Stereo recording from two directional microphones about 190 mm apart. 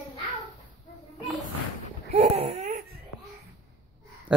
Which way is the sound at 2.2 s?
35° right (ahead or behind).